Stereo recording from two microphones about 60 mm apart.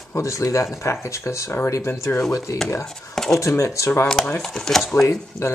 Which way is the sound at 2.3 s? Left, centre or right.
Left.